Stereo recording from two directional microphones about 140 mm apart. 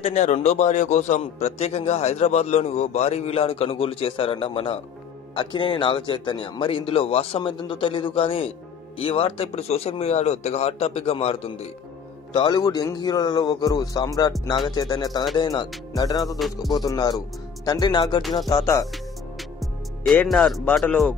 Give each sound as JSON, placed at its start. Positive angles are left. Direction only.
{"t": 0.0, "sound": "a man's voice", "side_deg": 55}
{"t": 12.4, "sound": "a man's voice", "side_deg": 30}
{"t": 20.2, "sound": "speech", "side_deg": 0}